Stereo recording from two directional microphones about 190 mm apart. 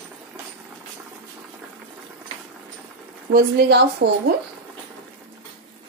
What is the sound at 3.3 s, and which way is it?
Speech, 55° right (ahead or behind).